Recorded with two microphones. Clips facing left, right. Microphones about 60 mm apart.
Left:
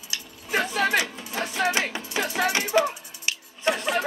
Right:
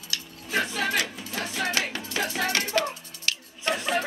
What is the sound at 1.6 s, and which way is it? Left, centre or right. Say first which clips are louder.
Music: left 4 dB; left.